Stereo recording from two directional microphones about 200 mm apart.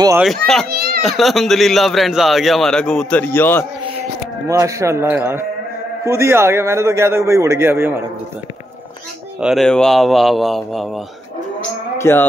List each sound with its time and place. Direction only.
0.2 s speech: centre (ahead or behind)
0.7 s a child's voice: 50° right (ahead or behind)
1.0 s speech: centre (ahead or behind)
4.5 s a man's voice: 15° right (ahead or behind)
9.4 s speech: centre (ahead or behind)
12.0 s speech: 10° left (ahead or behind)